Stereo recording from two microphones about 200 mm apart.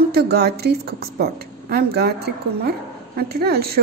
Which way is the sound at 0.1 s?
50° right (ahead or behind).